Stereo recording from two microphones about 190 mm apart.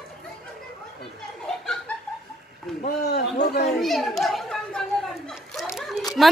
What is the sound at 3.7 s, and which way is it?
Chatter, centre (ahead or behind).